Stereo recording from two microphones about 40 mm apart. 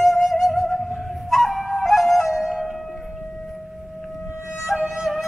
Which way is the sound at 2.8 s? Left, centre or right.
Centre.